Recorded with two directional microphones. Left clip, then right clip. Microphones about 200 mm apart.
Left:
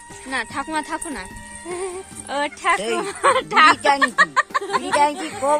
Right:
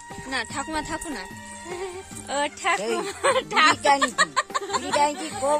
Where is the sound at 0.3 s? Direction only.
15° right (ahead or behind).